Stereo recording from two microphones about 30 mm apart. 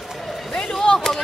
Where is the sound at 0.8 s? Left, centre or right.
Left.